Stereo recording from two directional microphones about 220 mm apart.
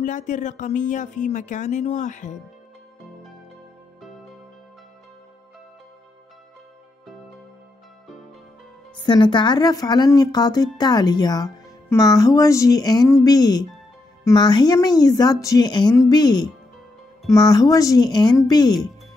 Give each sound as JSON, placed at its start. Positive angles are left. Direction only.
{"t": 0.0, "sound": "speech", "side_deg": 35}
{"t": 8.9, "sound": "a woman's voice", "side_deg": 20}